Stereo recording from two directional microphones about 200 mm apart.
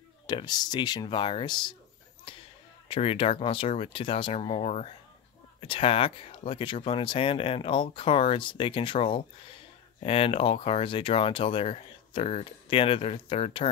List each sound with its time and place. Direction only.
0.3 s speech: 20° left (ahead or behind)
2.3 s basketball bounce: 25° left (ahead or behind)
2.9 s speech: 30° left (ahead or behind)